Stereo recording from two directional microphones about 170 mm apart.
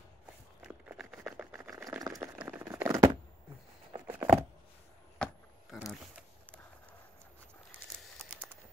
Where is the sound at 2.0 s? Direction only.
20° right (ahead or behind).